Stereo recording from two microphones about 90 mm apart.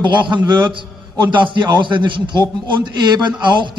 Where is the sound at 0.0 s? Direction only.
60° right (ahead or behind).